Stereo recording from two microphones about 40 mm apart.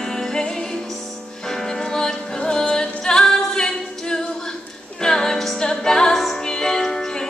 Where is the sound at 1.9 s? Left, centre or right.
Centre.